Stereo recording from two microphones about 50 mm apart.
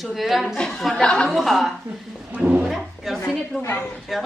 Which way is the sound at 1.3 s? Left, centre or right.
Centre.